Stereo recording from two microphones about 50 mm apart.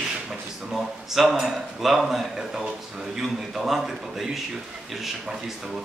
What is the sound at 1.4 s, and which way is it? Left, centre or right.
Speech, centre.